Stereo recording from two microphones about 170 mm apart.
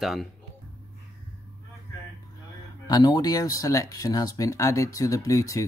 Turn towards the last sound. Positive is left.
turn(degrees=20)  # may be behind; listen again after turning